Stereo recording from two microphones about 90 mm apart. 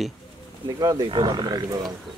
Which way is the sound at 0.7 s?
50° right (ahead or behind).